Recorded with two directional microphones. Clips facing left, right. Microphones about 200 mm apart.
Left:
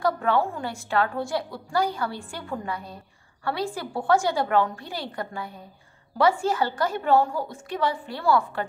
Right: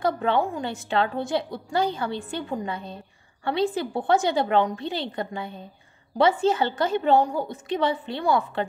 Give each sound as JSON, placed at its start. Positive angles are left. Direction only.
{"t": 0.0, "sound": "a woman's voice", "side_deg": -20}